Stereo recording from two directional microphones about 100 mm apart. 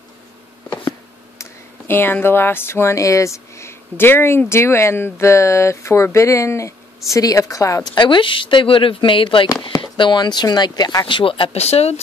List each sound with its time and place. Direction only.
1.4 s a woman's voice: 20° left (ahead or behind)
7.9 s speech: 55° left (ahead or behind); by 12.0 s 90° left